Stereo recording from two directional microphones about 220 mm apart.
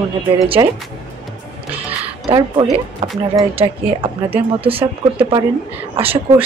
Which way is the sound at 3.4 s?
25° right (ahead or behind).